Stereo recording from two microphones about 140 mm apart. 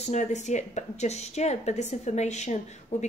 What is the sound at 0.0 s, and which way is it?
A woman's voice, 55° left (ahead or behind).